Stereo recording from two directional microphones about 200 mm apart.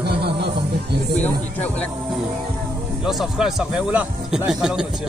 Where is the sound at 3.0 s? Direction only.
Centre (ahead or behind).